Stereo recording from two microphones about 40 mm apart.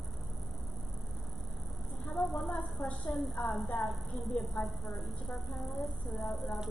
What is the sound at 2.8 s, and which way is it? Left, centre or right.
Speech, left.